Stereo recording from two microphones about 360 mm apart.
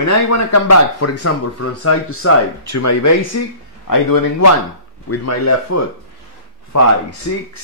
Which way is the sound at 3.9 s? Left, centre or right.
Left.